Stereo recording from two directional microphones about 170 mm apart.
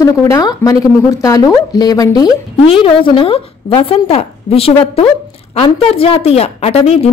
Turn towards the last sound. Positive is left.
turn(degrees=35)  # may be behind; listen again after turning